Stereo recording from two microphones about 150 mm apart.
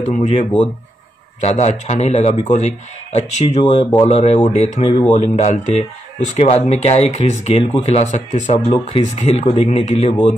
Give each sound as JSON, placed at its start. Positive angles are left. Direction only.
{"t": 0.0, "sound": "speech", "side_deg": 50}